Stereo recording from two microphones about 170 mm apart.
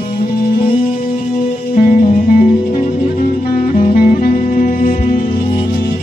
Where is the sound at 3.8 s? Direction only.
55° left (ahead or behind).